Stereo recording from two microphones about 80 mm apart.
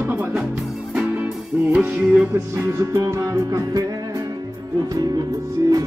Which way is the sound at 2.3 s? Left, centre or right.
Right.